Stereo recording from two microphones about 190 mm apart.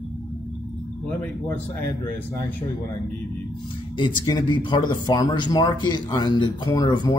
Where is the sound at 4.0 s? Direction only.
25° left (ahead or behind).